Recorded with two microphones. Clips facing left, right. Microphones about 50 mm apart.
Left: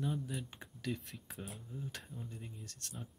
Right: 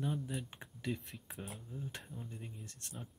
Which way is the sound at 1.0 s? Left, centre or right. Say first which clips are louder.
Even; centre.